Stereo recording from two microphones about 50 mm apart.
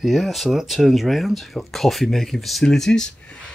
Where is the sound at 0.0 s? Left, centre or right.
Centre.